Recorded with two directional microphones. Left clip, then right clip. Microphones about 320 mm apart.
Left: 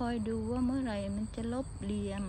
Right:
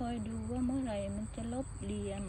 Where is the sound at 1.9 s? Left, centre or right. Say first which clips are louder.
Left 2 dB; left.